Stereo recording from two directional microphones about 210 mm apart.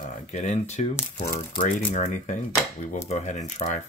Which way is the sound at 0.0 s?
35° left (ahead or behind).